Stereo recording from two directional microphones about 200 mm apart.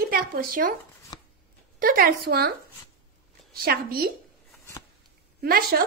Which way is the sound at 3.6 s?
50° right (ahead or behind).